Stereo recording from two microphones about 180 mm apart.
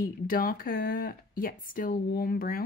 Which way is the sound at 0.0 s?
50° left (ahead or behind).